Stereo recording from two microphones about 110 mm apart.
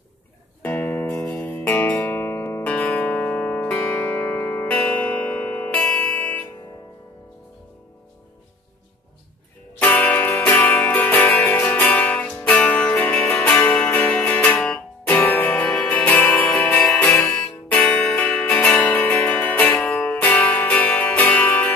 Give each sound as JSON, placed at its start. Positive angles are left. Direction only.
{"t": 0.6, "sound": "music", "side_deg": 15}
{"t": 1.1, "sound": "music", "side_deg": 5}
{"t": 9.8, "sound": "music", "side_deg": 15}